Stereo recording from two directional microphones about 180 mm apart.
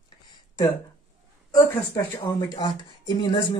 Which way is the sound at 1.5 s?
20° left (ahead or behind).